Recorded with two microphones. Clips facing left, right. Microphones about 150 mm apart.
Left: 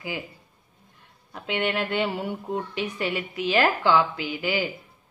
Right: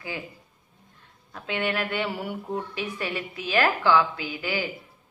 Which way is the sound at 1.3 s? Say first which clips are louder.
Left 2 dB; 20° left (ahead or behind).